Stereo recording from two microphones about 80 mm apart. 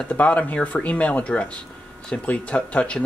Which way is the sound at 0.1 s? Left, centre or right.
Centre.